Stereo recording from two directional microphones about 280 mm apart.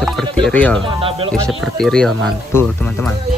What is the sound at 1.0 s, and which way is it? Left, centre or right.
Speech, centre.